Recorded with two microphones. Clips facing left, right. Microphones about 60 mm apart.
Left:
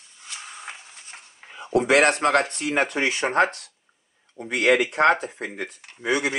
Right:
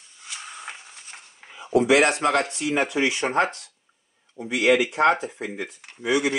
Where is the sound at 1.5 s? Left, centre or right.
Left.